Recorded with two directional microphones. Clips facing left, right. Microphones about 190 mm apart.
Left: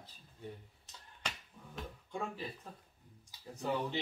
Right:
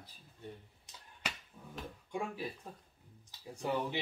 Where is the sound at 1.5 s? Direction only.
5° right (ahead or behind).